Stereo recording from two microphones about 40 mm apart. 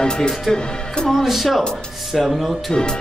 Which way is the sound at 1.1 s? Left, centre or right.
Centre.